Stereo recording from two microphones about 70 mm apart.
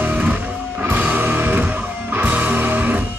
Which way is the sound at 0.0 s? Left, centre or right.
Right.